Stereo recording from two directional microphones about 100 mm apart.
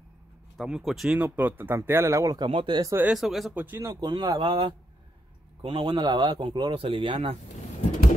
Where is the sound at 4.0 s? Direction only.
45° right (ahead or behind).